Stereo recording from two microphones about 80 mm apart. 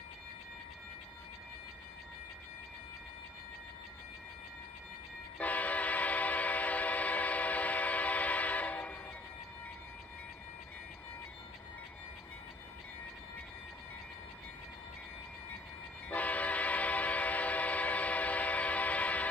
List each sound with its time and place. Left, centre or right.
5.4 s train: centre
16.1 s train: centre